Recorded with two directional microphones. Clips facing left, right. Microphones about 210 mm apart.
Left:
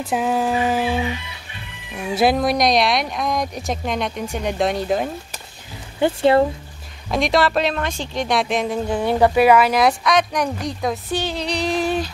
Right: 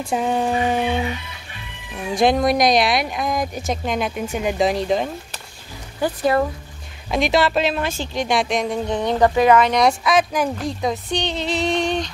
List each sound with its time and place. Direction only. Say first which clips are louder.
0.0 s speech: even; 5° left (ahead or behind)
2.1 s speech: right 1 dB; 5° left (ahead or behind)
5.9 s speech: left 4 dB; 25° left (ahead or behind)
7.1 s speech: even; centre (ahead or behind)